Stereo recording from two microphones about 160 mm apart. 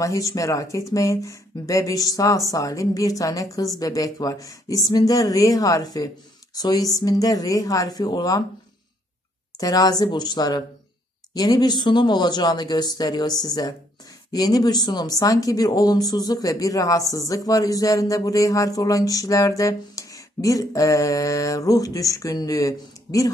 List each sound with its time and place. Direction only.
0.0 s speech: 20° left (ahead or behind)
9.6 s speech: 25° left (ahead or behind)